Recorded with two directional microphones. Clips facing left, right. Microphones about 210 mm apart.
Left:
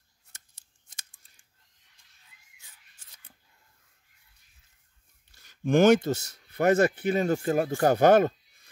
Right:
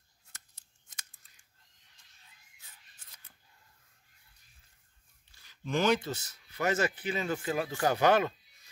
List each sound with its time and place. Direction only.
5.3 s speech: 45° left (ahead or behind)
6.5 s speech: 55° left (ahead or behind)